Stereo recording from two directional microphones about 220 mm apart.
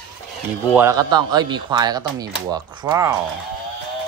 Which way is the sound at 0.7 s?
15° right (ahead or behind).